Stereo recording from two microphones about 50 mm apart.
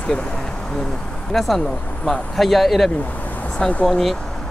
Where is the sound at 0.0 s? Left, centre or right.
Left.